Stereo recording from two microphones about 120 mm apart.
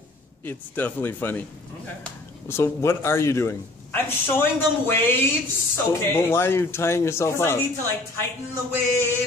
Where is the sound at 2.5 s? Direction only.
20° left (ahead or behind).